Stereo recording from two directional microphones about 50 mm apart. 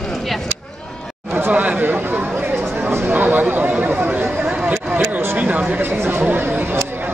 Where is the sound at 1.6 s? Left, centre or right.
Right.